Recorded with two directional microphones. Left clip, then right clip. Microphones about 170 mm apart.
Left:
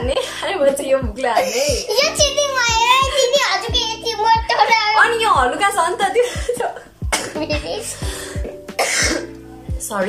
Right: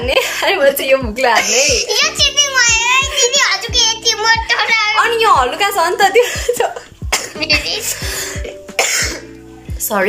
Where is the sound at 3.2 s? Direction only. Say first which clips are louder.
Right 2 dB; 25° left (ahead or behind).